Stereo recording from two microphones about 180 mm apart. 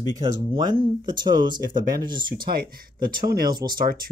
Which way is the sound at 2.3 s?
55° right (ahead or behind).